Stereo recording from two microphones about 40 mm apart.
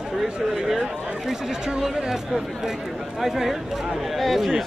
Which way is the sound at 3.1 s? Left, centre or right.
Centre.